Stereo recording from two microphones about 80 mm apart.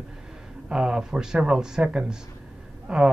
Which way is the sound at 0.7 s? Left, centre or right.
Centre.